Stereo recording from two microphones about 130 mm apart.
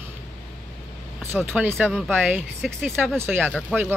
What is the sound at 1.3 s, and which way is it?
Speech, 15° right (ahead or behind).